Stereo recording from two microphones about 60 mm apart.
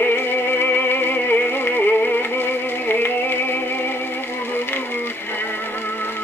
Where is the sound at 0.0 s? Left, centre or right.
Left.